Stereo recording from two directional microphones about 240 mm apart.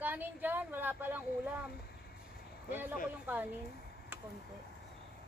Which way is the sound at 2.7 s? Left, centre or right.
Centre.